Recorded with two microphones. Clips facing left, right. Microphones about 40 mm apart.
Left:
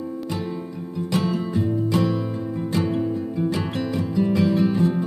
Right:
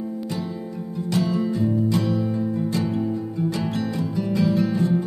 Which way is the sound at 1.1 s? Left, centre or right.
Left.